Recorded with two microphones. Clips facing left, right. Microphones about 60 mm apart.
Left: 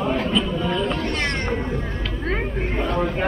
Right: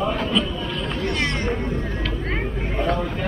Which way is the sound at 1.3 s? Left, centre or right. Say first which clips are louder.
Even; centre.